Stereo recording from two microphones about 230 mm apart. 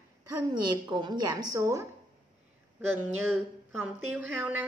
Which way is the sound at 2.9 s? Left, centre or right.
Centre.